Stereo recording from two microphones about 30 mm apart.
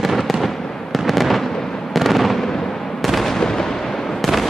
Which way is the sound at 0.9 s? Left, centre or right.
Centre.